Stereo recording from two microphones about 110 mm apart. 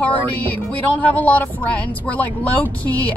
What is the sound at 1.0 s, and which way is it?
A woman's voice, 15° left (ahead or behind).